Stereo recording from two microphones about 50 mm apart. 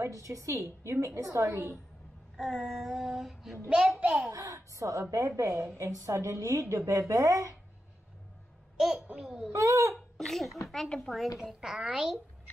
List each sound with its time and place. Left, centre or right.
0.0 s a woman's voice: right
0.8 s a woman's voice: right
2.3 s child singing: centre
3.7 s a child's voice: centre
4.3 s a woman's voice: right
8.7 s babbling: centre
9.2 s a child's voice: centre
9.5 s a woman's voice: right
9.9 s speech: centre
10.9 s speech: centre
11.6 s a child's voice: centre